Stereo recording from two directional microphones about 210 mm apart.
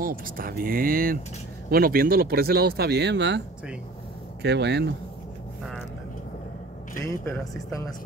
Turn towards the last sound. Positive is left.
turn(degrees=10)  # may be behind; listen again after turning